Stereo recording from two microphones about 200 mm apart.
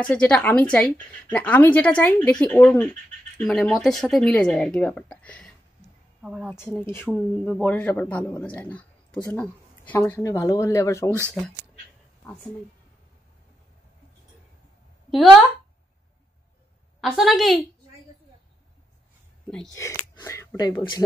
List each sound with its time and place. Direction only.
0.0 s speech: 5° left (ahead or behind)
6.2 s speech: 5° right (ahead or behind); by 11.1 s 15° left (ahead or behind)
15.0 s speech: centre (ahead or behind)
17.0 s speech: centre (ahead or behind)
20.2 s speech: 15° left (ahead or behind)